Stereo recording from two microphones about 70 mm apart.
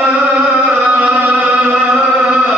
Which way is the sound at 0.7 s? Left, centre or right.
Right.